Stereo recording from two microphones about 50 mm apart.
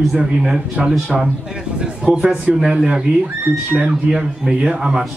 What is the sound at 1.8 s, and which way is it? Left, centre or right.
Speech, right.